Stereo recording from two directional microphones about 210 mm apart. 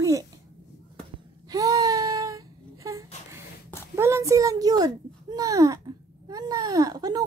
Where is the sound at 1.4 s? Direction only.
15° right (ahead or behind).